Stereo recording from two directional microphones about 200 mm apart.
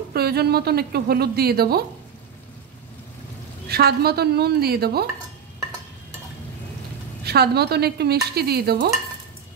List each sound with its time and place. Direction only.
0.1 s a woman's voice: 50° right (ahead or behind)
3.6 s a woman's voice: 50° right (ahead or behind)
7.2 s a woman's voice: 55° right (ahead or behind)